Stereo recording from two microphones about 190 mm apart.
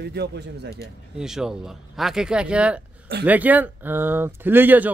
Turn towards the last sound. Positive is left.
turn(degrees=-10)  # may be behind; listen again after turning